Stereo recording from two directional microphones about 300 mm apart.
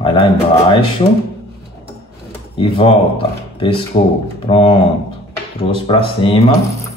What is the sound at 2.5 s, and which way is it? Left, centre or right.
Speech, centre.